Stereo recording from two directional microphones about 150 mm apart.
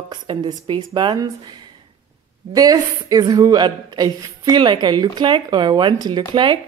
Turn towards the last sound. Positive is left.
turn(degrees=-35)  # may be behind; listen again after turning